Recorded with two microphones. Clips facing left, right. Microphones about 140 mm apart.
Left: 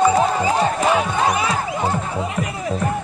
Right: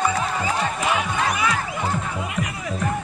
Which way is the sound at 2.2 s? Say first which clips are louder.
Left 4 dB; 35° left (ahead or behind).